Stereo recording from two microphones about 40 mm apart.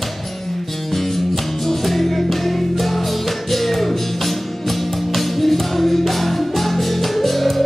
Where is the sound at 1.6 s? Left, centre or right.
Centre.